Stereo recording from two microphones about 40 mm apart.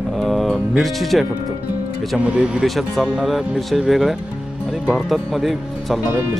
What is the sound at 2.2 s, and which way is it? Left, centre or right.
Speech, right.